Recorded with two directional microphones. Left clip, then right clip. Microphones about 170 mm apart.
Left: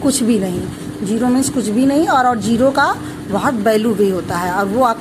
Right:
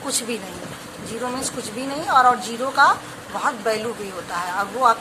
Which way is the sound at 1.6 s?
35° left (ahead or behind).